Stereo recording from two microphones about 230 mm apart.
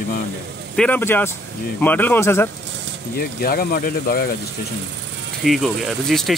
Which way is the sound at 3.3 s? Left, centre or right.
Left.